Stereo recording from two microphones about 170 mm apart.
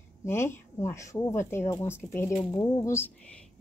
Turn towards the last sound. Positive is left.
turn(degrees=15)  # may be behind; listen again after turning